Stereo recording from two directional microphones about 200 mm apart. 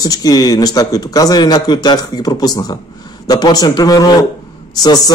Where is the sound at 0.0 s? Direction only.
20° left (ahead or behind).